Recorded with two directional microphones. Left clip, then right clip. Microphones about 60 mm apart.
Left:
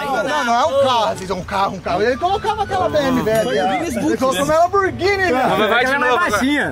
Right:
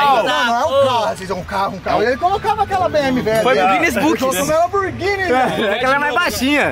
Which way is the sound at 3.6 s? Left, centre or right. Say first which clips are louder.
Right 5 dB; right.